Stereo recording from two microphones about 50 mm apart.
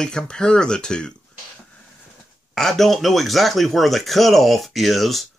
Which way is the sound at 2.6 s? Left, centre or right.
Centre.